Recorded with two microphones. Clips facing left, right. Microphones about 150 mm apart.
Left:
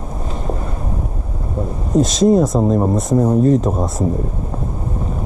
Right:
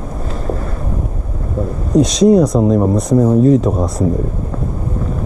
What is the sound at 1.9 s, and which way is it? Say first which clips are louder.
Speech: right 3 dB; centre (ahead or behind).